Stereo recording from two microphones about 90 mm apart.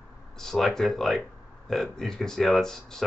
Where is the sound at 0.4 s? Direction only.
5° left (ahead or behind).